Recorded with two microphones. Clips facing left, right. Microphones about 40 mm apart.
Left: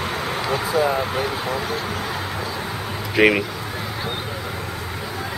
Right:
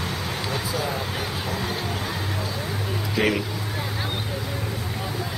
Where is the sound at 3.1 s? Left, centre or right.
Left.